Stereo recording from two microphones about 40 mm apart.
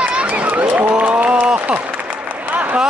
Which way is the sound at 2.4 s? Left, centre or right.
Right.